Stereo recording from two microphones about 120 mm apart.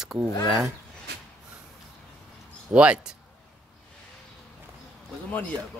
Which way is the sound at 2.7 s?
10° right (ahead or behind).